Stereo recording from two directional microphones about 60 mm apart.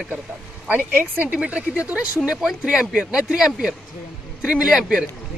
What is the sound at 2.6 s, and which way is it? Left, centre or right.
Speech, centre.